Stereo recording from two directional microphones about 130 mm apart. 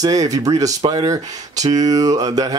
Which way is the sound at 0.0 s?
30° right (ahead or behind).